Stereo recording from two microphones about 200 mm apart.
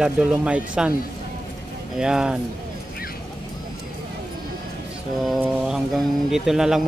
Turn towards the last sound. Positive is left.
turn(degrees=0)  # may be behind; listen again after turning